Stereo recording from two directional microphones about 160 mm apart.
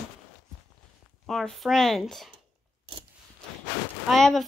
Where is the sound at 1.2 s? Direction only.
Centre (ahead or behind).